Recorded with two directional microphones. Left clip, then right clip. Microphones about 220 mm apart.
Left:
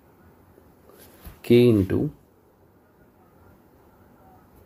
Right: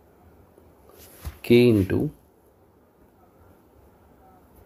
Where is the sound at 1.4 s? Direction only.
15° right (ahead or behind).